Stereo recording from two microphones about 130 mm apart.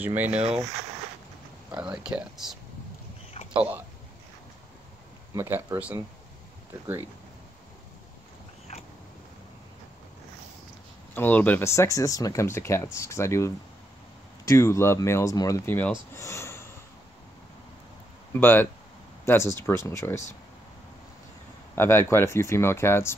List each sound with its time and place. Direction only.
0.0 s speech: 15° right (ahead or behind)
0.3 s speech: 55° right (ahead or behind)
1.8 s speech: 5° right (ahead or behind)
5.3 s speech: 20° right (ahead or behind)
11.1 s speech: 10° left (ahead or behind)
14.5 s speech: 20° left (ahead or behind)
16.2 s a sound: 20° left (ahead or behind)
18.3 s speech: 15° left (ahead or behind)
21.7 s speech: 20° left (ahead or behind)